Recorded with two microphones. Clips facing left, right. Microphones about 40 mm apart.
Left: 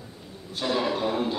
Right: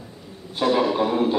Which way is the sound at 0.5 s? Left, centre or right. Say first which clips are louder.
Right 6 dB; right.